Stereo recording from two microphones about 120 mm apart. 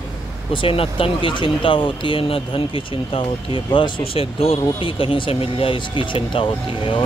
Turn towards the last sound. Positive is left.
turn(degrees=45)  # may be behind; listen again after turning